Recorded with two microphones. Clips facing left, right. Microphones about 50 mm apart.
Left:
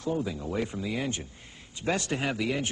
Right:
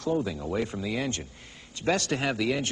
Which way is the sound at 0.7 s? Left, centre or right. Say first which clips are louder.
Right 1 dB; centre.